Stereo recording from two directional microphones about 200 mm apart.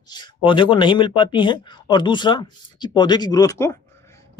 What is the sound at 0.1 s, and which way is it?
Speech, 25° left (ahead or behind).